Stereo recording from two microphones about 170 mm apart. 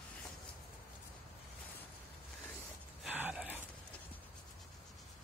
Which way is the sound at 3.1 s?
10° right (ahead or behind).